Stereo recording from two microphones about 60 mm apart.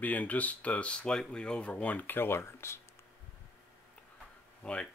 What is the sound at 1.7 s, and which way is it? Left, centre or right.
Speech, left.